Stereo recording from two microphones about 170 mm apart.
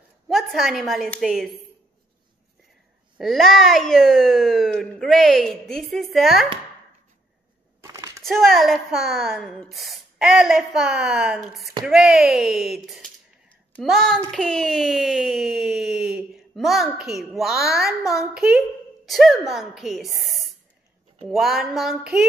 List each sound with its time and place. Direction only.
0.3 s a woman's voice: centre (ahead or behind)
3.2 s speech: centre (ahead or behind)
7.8 s a sound: 20° right (ahead or behind)
8.2 s speech: centre (ahead or behind)
21.2 s speech: centre (ahead or behind)